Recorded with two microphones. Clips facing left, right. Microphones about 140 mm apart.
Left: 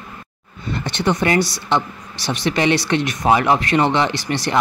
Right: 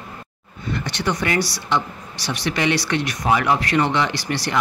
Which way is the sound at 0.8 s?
25° left (ahead or behind).